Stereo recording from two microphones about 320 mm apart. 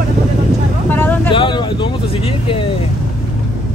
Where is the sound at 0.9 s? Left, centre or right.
Centre.